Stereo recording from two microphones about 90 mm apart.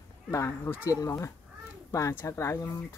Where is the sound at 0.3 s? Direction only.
30° left (ahead or behind).